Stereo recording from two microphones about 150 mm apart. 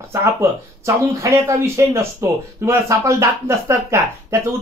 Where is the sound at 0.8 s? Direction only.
20° right (ahead or behind).